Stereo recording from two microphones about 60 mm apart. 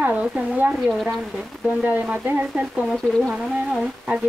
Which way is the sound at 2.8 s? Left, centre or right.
Centre.